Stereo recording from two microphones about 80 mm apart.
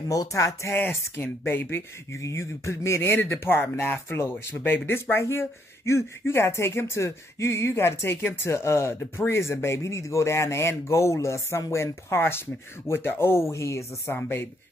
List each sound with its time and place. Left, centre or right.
0.1 s speech: left
0.7 s speech: left
2.1 s speech: left